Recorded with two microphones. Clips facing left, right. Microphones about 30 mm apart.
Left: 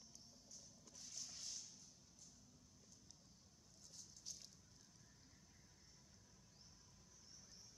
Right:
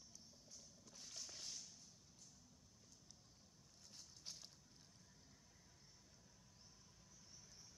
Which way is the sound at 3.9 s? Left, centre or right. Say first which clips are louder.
Right 1 dB; right.